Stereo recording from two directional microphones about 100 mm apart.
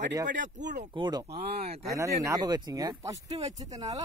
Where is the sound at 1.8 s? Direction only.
30° right (ahead or behind).